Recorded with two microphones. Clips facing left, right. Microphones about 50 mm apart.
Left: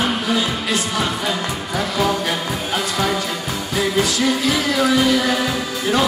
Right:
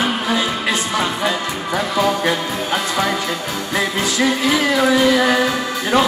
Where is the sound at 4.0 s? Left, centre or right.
Right.